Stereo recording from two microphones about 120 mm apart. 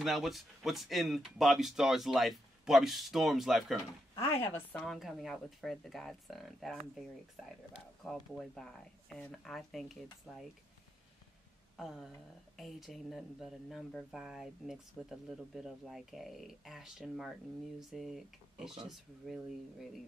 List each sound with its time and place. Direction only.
0.0 s speech: centre (ahead or behind)
4.5 s a woman's voice: 15° left (ahead or behind)
4.8 s speech: centre (ahead or behind)
8.0 s speech: centre (ahead or behind)
11.7 s a sound: centre (ahead or behind)
12.5 s speech: centre (ahead or behind)